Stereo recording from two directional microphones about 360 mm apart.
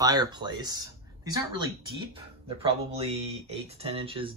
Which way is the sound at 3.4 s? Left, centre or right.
Centre.